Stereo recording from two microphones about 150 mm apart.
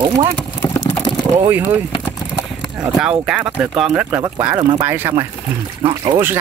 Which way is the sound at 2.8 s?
5° right (ahead or behind).